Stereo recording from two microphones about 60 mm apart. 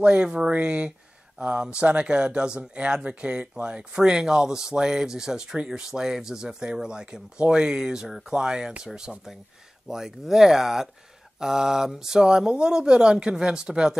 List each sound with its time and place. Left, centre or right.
0.0 s speech: centre